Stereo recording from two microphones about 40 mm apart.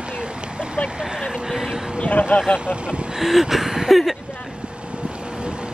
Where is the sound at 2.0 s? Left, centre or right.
Left.